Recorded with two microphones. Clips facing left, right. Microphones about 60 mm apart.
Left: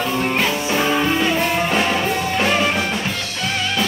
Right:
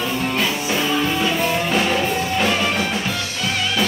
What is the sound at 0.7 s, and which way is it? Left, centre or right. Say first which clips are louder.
Music: left 3 dB; left.